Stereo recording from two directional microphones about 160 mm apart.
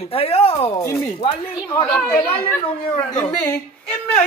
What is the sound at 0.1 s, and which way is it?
Speech, 35° left (ahead or behind).